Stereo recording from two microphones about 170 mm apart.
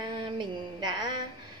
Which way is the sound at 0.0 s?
25° right (ahead or behind).